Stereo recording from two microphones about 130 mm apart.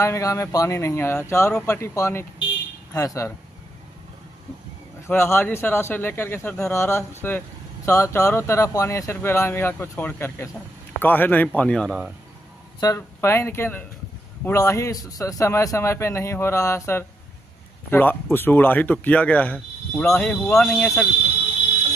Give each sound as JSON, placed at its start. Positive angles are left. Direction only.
{"t": 0.0, "sound": "a man's voice", "side_deg": 25}
{"t": 5.0, "sound": "a man's voice", "side_deg": 20}
{"t": 12.8, "sound": "a man's voice", "side_deg": 25}